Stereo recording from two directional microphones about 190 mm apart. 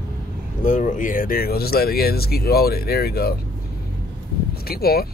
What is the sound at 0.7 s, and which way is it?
Speech, 40° left (ahead or behind).